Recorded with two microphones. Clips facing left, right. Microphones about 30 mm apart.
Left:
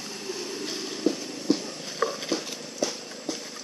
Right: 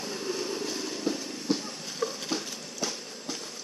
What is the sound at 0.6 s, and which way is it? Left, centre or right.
Vehicle, centre.